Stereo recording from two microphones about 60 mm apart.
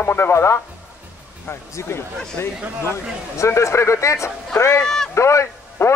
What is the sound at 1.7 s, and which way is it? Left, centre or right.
Speech, left.